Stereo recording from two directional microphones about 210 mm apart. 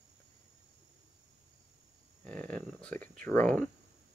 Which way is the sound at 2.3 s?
5° left (ahead or behind).